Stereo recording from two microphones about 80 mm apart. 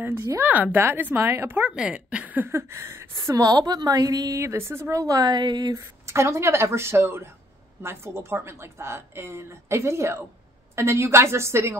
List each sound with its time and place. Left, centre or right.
0.4 s speech: right
1.6 s speech: centre
2.5 s speech: right
3.3 s speech: right
4.4 s speech: right
6.1 s speech: right